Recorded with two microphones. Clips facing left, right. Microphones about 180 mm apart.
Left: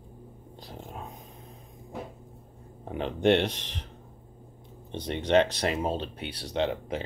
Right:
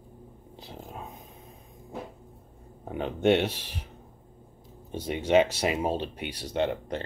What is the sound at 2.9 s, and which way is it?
Speech, centre (ahead or behind).